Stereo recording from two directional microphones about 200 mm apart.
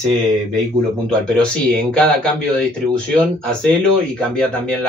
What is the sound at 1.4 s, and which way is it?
Speech, 5° left (ahead or behind).